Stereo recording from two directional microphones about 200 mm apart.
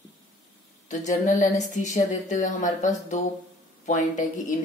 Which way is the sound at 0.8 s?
40° left (ahead or behind).